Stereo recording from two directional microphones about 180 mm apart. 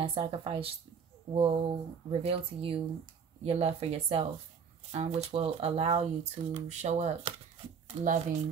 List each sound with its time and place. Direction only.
0.0 s speech: 30° right (ahead or behind)